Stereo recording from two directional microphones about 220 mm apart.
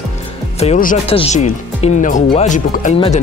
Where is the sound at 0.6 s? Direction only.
35° left (ahead or behind).